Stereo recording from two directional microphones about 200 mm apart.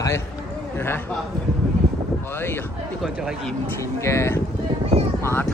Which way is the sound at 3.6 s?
15° left (ahead or behind).